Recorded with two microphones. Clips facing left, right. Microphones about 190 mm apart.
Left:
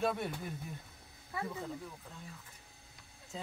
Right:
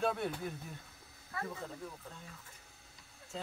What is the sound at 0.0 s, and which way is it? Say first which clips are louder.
Speech: even; 10° left (ahead or behind).